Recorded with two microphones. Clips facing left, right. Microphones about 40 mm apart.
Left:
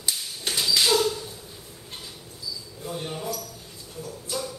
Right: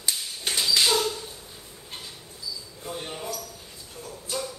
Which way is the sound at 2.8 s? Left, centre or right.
Centre.